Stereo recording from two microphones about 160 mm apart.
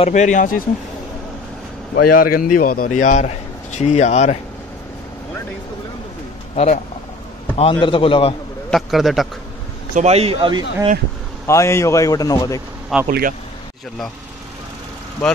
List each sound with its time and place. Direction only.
0.0 s a man's voice: 50° left (ahead or behind)
2.0 s a man's voice: 60° left (ahead or behind); by 4.4 s 45° left (ahead or behind)
6.5 s a man's voice: 40° left (ahead or behind)
8.6 s a man's voice: centre (ahead or behind)
9.9 s speech: 40° right (ahead or behind)
11.4 s a man's voice: 15° left (ahead or behind)
12.9 s a man's voice: centre (ahead or behind)